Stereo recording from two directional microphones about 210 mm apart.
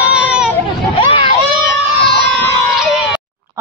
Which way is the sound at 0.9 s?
25° left (ahead or behind).